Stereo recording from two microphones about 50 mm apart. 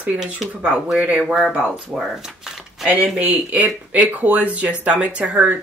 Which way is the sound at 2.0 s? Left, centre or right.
Centre.